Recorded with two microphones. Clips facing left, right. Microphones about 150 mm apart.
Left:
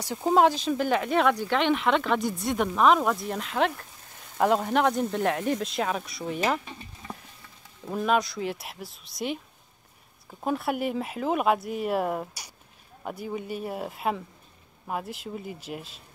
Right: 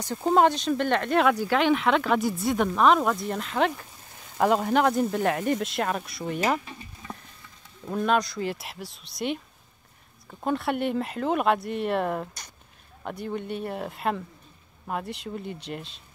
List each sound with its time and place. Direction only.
0.0 s speech: 5° left (ahead or behind)
7.8 s speech: 5° left (ahead or behind)
10.4 s speech: 5° left (ahead or behind)